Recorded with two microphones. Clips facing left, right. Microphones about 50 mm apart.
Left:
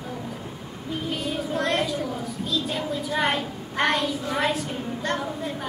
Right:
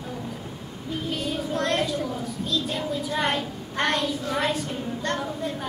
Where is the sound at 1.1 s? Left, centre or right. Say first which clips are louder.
Even; centre.